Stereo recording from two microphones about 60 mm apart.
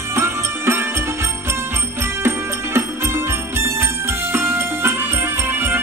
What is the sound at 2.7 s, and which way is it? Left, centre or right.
Music, right.